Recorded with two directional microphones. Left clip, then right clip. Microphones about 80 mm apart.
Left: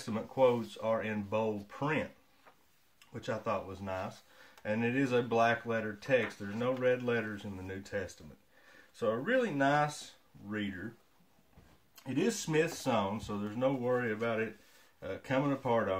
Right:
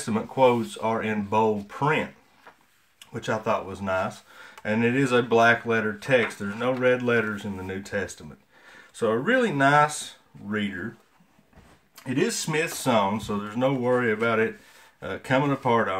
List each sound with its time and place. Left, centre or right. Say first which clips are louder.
0.0 s speech: right 8 dB; right
3.1 s speech: right 10 dB; right
12.0 s speech: right 8 dB; centre